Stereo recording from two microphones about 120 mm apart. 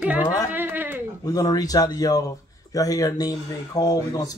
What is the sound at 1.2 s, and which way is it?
Speech, 30° left (ahead or behind).